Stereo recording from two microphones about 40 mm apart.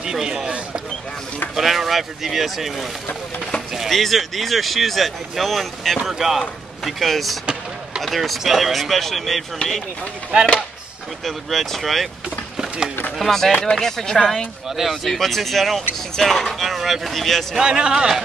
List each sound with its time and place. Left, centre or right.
0.0 s a man's voice: centre
1.5 s speech: centre
3.9 s speech: centre
10.3 s a man's voice: right
11.2 s speech: centre
12.5 s a sound: centre
13.2 s speech: centre
17.6 s a man's voice: right